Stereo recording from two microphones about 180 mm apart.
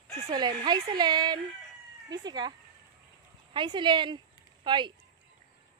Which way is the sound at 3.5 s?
25° right (ahead or behind).